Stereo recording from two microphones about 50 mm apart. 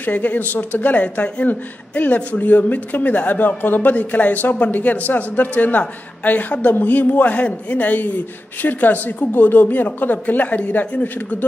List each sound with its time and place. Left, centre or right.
0.0 s speech: left